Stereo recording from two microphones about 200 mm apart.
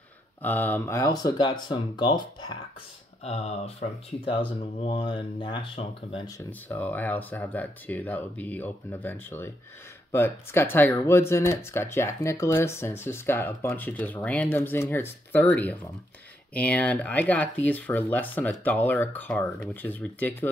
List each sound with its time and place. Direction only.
0.4 s speech: 10° left (ahead or behind)
3.3 s speech: 30° left (ahead or behind); by 20.4 s 10° left (ahead or behind)